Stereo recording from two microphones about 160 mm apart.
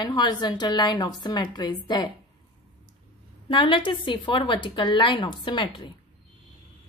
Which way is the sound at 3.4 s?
30° left (ahead or behind).